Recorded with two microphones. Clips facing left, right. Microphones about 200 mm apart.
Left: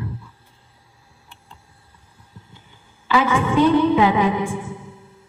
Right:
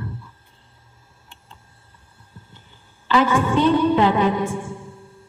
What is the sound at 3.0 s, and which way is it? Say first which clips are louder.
A woman's voice: right 1 dB; 10° left (ahead or behind).